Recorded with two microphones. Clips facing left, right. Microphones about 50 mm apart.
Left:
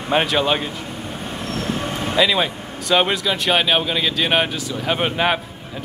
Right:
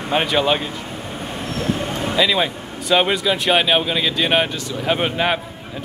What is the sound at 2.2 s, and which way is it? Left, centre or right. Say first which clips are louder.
Speech: left 1 dB; centre.